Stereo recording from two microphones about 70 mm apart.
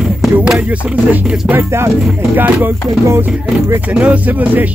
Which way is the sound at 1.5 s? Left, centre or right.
Right.